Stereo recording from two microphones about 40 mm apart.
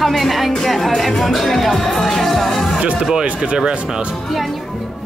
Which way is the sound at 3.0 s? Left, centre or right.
Centre.